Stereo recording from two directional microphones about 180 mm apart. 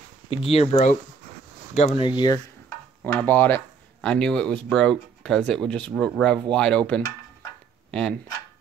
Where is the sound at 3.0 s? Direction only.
10° left (ahead or behind).